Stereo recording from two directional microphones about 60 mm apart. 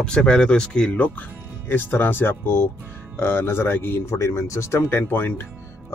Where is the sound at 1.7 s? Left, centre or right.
Left.